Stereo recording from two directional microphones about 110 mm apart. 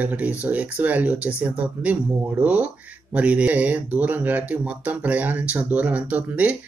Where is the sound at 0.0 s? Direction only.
15° right (ahead or behind).